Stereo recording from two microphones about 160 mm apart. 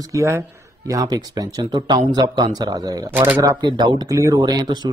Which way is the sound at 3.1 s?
10° right (ahead or behind).